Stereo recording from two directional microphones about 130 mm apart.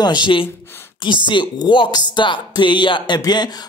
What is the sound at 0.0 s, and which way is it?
Speech, 35° left (ahead or behind).